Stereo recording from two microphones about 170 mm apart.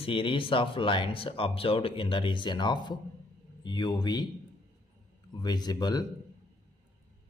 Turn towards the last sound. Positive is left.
turn(degrees=25)  # may be behind; listen again after turning